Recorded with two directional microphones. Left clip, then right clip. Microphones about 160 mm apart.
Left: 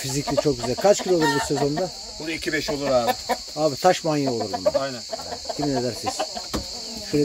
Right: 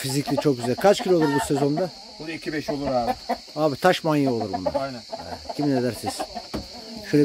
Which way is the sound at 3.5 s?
35° right (ahead or behind).